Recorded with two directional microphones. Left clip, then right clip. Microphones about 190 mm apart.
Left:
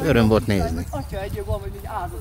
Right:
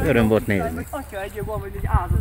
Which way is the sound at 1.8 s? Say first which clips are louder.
Right 5 dB; 45° left (ahead or behind).